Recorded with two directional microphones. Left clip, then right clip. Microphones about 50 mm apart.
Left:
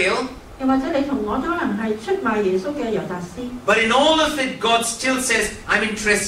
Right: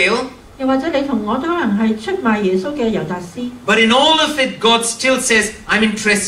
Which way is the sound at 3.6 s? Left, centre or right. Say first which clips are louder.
Right 4 dB; right.